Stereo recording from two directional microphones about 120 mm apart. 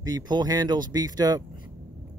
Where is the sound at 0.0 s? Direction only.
35° right (ahead or behind).